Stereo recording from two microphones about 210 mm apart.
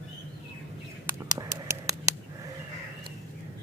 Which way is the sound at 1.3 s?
15° right (ahead or behind).